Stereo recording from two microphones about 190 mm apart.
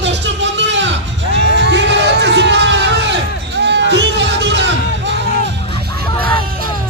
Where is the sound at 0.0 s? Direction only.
70° right (ahead or behind).